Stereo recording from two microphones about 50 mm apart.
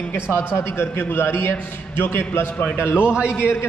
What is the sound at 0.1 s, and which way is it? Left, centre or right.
A man's voice, left.